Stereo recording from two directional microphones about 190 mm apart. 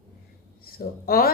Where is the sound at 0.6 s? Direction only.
50° left (ahead or behind).